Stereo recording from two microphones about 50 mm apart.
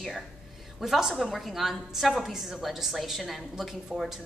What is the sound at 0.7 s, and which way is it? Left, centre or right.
A woman's voice, centre.